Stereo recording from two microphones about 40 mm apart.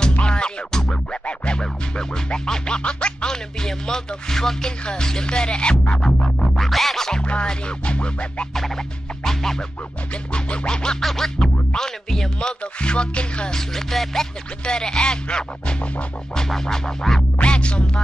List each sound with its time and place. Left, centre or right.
0.1 s music: left
1.6 s music: centre
5.9 s music: centre
6.6 s music: centre
7.1 s music: left
9.2 s music: centre
10.3 s music: left
11.0 s music: centre
12.4 s music: left
13.6 s music: centre
14.6 s music: centre
16.3 s music: centre
17.4 s music: left